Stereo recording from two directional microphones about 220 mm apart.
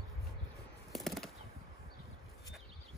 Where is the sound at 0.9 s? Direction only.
Centre (ahead or behind).